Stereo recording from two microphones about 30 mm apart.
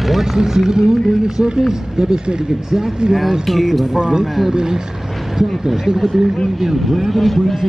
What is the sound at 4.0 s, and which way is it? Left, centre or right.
Speech, right.